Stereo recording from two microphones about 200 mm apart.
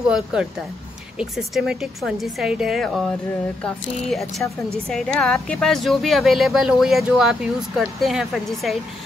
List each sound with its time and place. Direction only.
0.1 s speech: 5° right (ahead or behind)